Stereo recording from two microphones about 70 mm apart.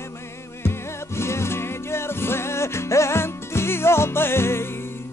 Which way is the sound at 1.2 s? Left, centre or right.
Left.